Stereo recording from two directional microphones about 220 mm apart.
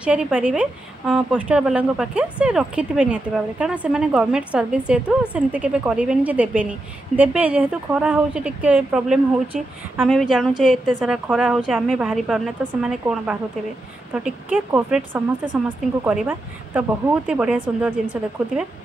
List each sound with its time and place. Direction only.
0.0 s speech: 5° right (ahead or behind)